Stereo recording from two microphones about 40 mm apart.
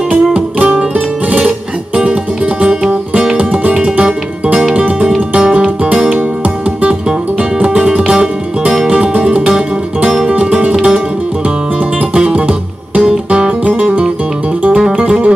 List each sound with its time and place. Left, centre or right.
0.1 s music: right
5.9 s music: right
12.1 s music: right